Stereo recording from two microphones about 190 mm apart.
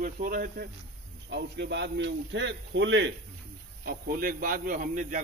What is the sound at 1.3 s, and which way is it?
A man's voice, 60° right (ahead or behind).